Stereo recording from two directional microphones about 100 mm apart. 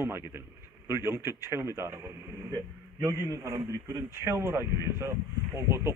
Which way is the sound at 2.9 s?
35° right (ahead or behind).